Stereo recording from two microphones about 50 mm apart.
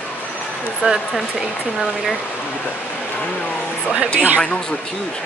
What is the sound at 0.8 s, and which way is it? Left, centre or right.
Speech, right.